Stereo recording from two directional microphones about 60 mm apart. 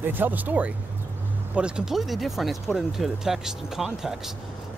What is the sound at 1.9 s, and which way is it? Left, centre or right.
Speech, centre.